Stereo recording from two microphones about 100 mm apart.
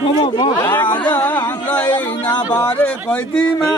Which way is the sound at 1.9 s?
45° left (ahead or behind).